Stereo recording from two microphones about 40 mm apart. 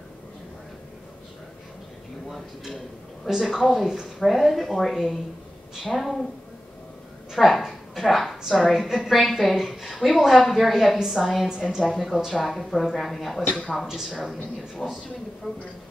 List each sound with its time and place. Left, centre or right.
2.2 s a woman's voice: centre
4.9 s a woman's voice: centre
7.3 s a sound: centre
8.5 s a woman's voice: centre
12.4 s a woman's voice: centre
13.8 s a woman's voice: centre
15.4 s speech: left